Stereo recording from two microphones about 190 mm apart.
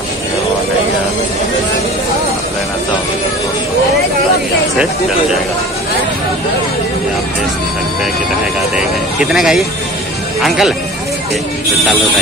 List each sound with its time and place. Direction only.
8.7 s speech: 5° right (ahead or behind)